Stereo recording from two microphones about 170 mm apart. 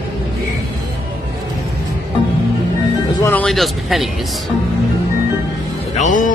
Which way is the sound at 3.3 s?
5° left (ahead or behind).